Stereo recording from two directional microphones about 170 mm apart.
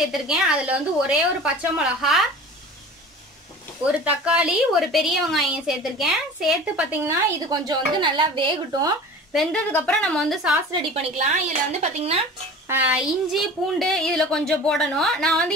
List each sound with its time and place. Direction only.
0.0 s a woman's voice: 5° right (ahead or behind)
3.8 s a woman's voice: 5° right (ahead or behind)
7.4 s speech: 25° right (ahead or behind)
9.3 s a woman's voice: 5° left (ahead or behind)
10.7 s speech: 30° right (ahead or behind)
11.2 s speech: 40° right (ahead or behind)
12.6 s a woman's voice: 10° right (ahead or behind)